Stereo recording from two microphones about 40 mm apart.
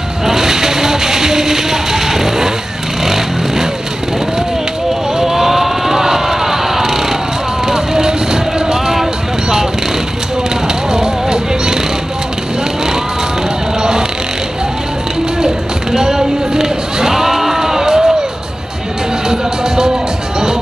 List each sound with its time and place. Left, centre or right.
0.2 s music: centre
3.0 s vehicle: centre
5.1 s vehicle: centre
7.6 s a sound: centre
10.9 s music: centre
13.7 s music: centre
15.4 s a sound: centre
19.2 s music: centre